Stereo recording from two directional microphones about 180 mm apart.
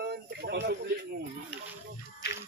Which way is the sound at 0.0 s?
65° right (ahead or behind).